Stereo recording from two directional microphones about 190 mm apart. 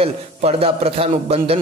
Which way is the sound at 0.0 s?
30° right (ahead or behind).